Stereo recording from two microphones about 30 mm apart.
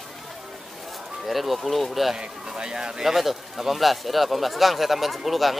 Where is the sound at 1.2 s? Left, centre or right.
Centre.